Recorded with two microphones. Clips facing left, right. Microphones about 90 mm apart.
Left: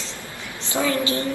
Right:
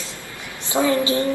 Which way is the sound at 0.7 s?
20° right (ahead or behind).